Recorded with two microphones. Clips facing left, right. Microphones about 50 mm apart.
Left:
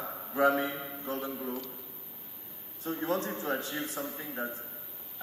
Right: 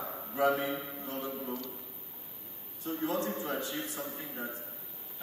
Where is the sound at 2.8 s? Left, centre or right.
Left.